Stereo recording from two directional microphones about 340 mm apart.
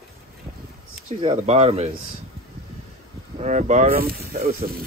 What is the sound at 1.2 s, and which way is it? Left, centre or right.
Speech, centre.